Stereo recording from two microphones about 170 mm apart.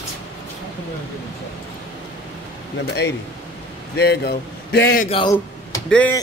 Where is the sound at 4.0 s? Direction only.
75° left (ahead or behind).